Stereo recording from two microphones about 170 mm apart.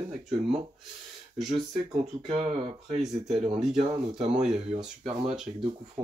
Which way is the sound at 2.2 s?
35° right (ahead or behind).